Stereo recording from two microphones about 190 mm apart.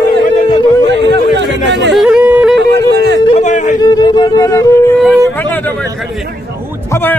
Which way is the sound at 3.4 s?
40° left (ahead or behind).